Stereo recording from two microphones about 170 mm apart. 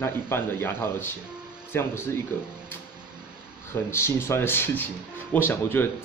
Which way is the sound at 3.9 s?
15° left (ahead or behind).